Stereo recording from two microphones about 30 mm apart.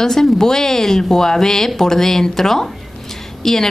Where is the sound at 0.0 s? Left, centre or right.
Centre.